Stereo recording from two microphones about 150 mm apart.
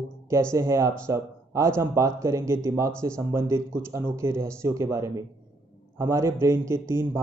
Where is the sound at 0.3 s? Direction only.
20° right (ahead or behind).